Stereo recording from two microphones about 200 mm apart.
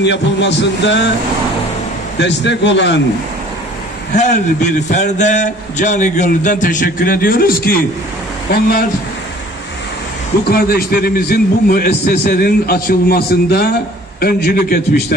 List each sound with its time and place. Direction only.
0.0 s a man's voice: 60° left (ahead or behind)
2.1 s a man's voice: 60° left (ahead or behind)
4.1 s a man's voice: 35° left (ahead or behind)
10.5 s a man's voice: 50° left (ahead or behind)